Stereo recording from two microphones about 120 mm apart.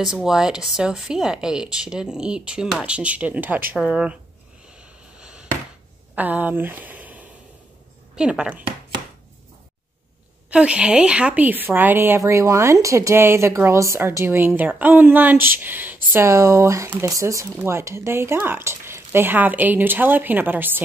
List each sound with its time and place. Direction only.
0.0 s a woman's voice: 5° right (ahead or behind)
4.7 s vehicle: 10° right (ahead or behind)
6.1 s a woman's voice: 15° right (ahead or behind)
10.5 s a woman's voice: 10° right (ahead or behind)